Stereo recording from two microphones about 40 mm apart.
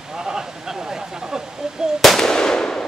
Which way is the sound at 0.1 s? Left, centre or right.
Centre.